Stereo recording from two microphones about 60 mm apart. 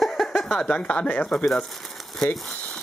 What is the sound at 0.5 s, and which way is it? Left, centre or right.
Speech, left.